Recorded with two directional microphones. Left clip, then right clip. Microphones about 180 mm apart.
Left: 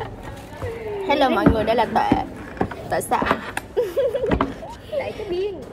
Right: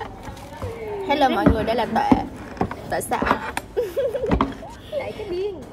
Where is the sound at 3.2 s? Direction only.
35° right (ahead or behind).